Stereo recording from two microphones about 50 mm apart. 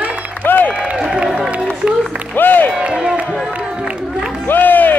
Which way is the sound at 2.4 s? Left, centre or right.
Left.